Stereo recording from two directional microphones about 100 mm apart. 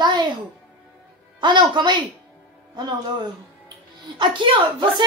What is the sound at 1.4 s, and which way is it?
Speech, 50° right (ahead or behind).